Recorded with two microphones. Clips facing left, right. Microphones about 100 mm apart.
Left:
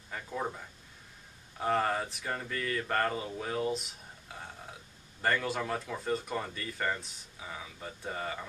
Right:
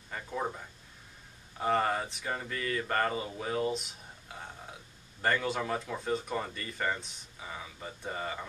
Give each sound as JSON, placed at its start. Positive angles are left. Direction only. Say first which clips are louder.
{"t": 0.1, "sound": "speech", "louder": "right 1 dB", "side_deg": -5}